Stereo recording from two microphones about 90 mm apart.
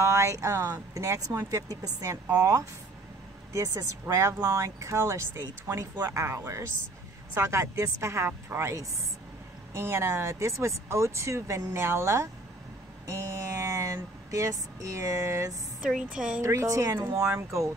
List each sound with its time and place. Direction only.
0.0 s speech: 35° right (ahead or behind)
16.1 s a woman's voice: 10° right (ahead or behind)
16.3 s speech: 35° right (ahead or behind)